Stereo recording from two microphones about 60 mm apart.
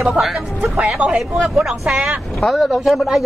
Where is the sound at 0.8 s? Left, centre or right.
Centre.